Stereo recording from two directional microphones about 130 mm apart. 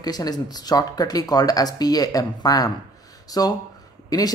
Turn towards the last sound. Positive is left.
turn(degrees=30)  # may be behind; listen again after turning